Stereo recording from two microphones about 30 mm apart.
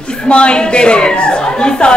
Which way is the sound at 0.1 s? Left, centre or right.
Left.